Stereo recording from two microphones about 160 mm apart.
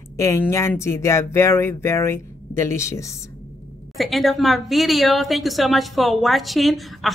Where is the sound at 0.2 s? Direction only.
20° left (ahead or behind).